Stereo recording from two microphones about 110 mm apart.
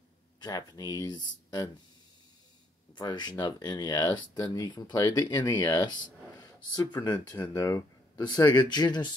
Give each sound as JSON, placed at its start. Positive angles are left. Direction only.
{"t": 0.4, "sound": "speech", "side_deg": 35}
{"t": 2.9, "sound": "speech", "side_deg": 40}